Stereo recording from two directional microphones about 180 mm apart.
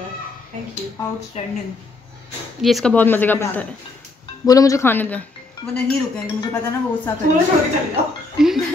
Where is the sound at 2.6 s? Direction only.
Centre (ahead or behind).